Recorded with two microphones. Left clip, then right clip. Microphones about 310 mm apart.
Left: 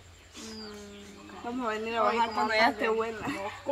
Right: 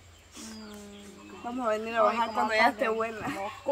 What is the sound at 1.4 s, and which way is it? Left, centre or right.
Speech, centre.